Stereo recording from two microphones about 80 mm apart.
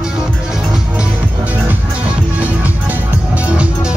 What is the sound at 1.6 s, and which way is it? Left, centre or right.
Music, centre.